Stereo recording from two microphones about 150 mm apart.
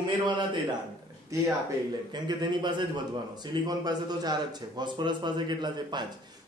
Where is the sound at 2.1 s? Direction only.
30° right (ahead or behind).